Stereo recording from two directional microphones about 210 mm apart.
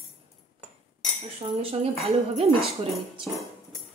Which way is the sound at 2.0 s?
30° right (ahead or behind).